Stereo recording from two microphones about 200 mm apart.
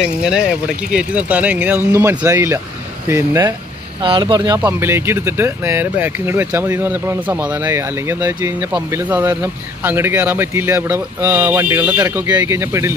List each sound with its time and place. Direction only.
0.0 s speech: 5° right (ahead or behind)
4.0 s speech: 25° right (ahead or behind)
4.6 s speech: 10° right (ahead or behind)